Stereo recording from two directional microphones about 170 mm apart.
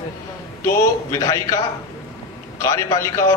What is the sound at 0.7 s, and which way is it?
Speech, 15° left (ahead or behind).